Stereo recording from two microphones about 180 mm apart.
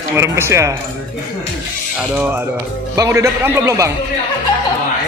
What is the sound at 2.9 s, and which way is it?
Speech, 15° right (ahead or behind).